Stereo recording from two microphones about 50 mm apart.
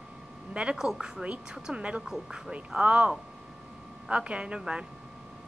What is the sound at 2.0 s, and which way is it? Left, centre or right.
Speech, centre.